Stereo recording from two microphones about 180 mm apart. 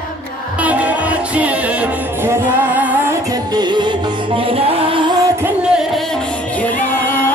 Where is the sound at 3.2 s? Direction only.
20° right (ahead or behind).